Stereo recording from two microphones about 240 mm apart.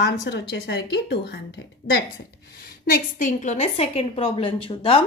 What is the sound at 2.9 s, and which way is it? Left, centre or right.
A woman's voice, left.